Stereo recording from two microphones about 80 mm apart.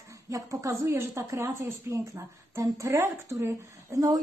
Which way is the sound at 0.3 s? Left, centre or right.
Right.